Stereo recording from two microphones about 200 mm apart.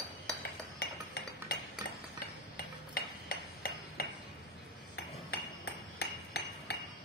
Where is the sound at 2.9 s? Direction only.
50° left (ahead or behind).